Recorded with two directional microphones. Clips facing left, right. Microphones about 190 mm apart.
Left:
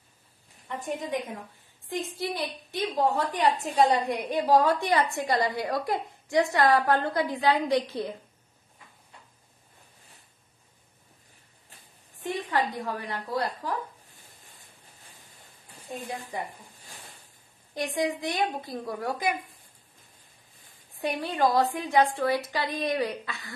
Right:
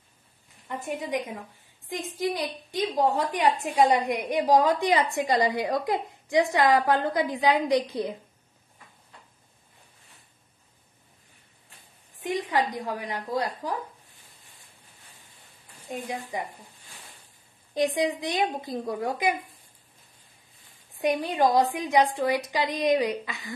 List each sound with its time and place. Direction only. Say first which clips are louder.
0.7 s a woman's voice: right 1 dB; 10° right (ahead or behind)
12.2 s a woman's voice: right 2 dB; 10° right (ahead or behind)
15.9 s a woman's voice: right 3 dB; 15° right (ahead or behind)
17.7 s a woman's voice: right 4 dB; 20° right (ahead or behind)
21.0 s a woman's voice: right 3 dB; 15° right (ahead or behind)